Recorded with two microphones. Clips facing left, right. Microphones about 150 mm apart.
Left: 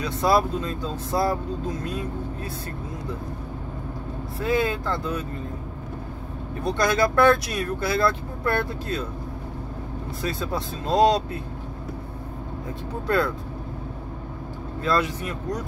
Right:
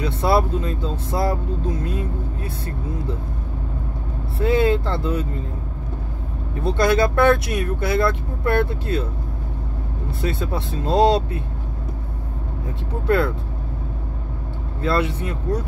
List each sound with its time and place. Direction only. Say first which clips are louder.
0.0 s speech: right 2 dB; 25° right (ahead or behind)
4.4 s speech: right 6 dB; 30° right (ahead or behind)
6.6 s speech: right 4 dB; 25° right (ahead or behind)
10.2 s speech: right 3 dB; 25° right (ahead or behind)
14.8 s speech: right 2 dB; 25° right (ahead or behind)